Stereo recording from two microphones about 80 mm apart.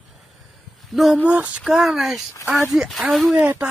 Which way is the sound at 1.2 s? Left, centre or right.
Centre.